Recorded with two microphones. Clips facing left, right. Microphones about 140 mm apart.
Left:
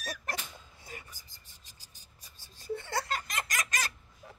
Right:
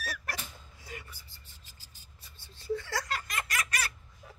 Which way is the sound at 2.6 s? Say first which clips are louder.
Right 1 dB; 20° left (ahead or behind).